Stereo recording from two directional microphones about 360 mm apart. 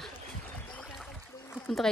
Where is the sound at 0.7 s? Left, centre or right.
Centre.